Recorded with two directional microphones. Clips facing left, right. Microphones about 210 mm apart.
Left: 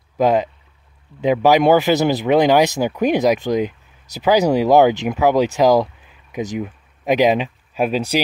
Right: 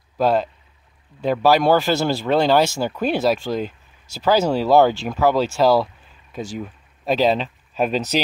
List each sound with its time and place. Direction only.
0.2 s speech: 15° left (ahead or behind)